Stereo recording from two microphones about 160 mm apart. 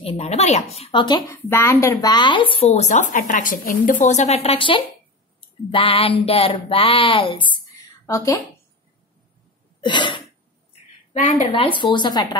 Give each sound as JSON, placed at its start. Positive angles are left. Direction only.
{"t": 0.0, "sound": "speech", "side_deg": 45}
{"t": 1.3, "sound": "speech", "side_deg": 15}
{"t": 9.8, "sound": "a sound", "side_deg": 30}
{"t": 11.1, "sound": "speech", "side_deg": 50}
{"t": 11.5, "sound": "speech", "side_deg": 35}